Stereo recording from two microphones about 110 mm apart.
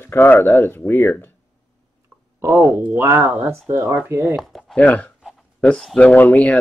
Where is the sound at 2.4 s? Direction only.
20° right (ahead or behind).